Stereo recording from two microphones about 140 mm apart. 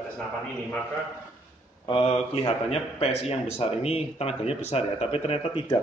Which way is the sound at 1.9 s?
40° left (ahead or behind).